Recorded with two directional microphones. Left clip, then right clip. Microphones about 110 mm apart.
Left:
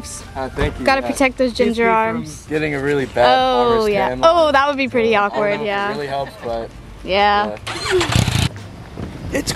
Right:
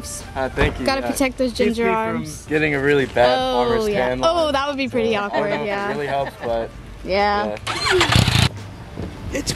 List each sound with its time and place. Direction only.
0.4 s speech: 15° right (ahead or behind)
0.8 s speech: 15° left (ahead or behind)
2.1 s speech: centre (ahead or behind)
3.2 s speech: 15° left (ahead or behind)
7.5 s vehicle: 15° right (ahead or behind)
9.3 s speech: 20° left (ahead or behind)